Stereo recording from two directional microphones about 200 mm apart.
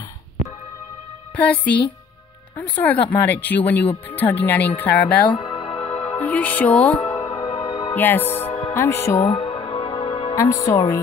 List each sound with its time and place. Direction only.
1.3 s speech: 5° left (ahead or behind)
5.3 s music: 25° left (ahead or behind)
6.1 s speech: 10° left (ahead or behind)
7.0 s music: 15° left (ahead or behind)
7.9 s speech: 10° left (ahead or behind)
8.5 s music: 25° left (ahead or behind)
8.7 s speech: 15° left (ahead or behind)
9.2 s music: 25° left (ahead or behind)